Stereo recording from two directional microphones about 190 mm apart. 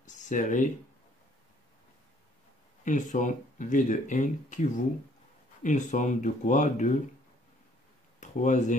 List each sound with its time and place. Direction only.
0.0 s a sound: 40° left (ahead or behind)
2.8 s speech: 40° left (ahead or behind)
8.2 s speech: 40° left (ahead or behind)